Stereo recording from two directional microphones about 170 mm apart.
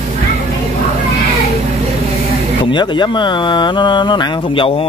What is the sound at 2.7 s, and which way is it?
Speech, 25° left (ahead or behind).